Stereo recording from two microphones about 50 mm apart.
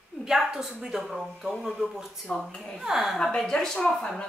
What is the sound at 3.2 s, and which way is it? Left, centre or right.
Speech, centre.